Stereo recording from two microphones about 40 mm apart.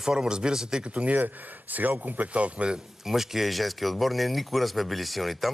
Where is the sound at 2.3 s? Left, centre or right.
Right.